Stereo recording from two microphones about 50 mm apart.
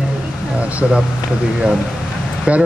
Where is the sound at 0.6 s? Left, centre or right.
Right.